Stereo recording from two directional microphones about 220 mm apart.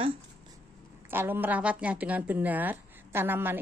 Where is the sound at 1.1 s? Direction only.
10° right (ahead or behind).